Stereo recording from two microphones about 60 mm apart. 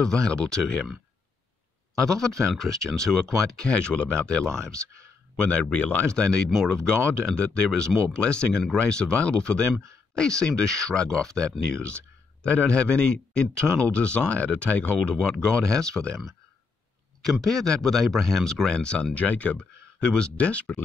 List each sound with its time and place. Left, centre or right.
0.0 s a man's voice: centre
2.1 s a man's voice: centre
5.4 s a man's voice: centre
17.3 s speech: centre
18.7 s a man's voice: centre